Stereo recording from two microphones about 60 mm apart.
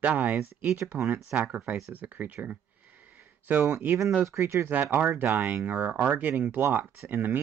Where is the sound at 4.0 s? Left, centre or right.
Right.